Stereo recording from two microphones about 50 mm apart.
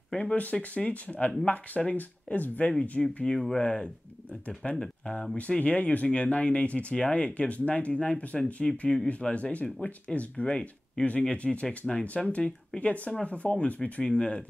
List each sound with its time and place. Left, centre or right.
0.1 s speech: left
5.6 s speech: left